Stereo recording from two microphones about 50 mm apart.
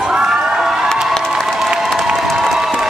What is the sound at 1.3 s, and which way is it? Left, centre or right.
Applause, centre.